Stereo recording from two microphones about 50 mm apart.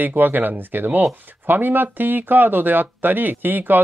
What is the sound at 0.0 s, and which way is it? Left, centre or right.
Speech, right.